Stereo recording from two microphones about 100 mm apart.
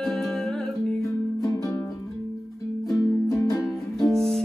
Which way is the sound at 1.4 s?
35° left (ahead or behind).